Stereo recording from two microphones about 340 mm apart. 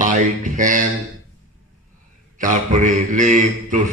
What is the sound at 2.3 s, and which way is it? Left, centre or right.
A man's voice, right.